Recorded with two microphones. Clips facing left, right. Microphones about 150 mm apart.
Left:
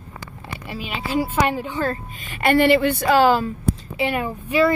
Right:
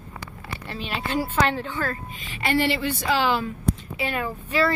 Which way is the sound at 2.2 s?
55° left (ahead or behind).